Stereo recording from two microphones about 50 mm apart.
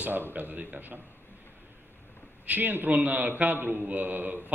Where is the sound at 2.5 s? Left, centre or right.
Right.